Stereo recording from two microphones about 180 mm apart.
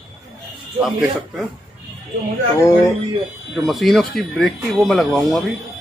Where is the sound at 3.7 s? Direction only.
Centre (ahead or behind).